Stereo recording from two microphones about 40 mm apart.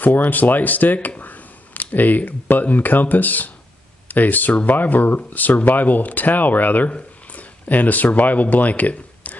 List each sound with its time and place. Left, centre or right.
0.0 s speech: left